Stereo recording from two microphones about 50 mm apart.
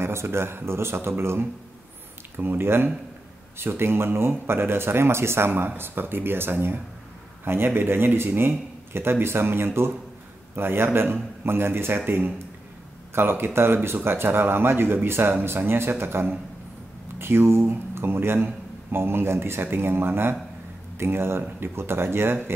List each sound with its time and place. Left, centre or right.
0.0 s speech: right
5.5 s speech: right